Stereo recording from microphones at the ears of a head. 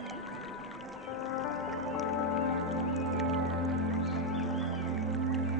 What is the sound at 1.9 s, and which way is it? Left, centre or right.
Music, left.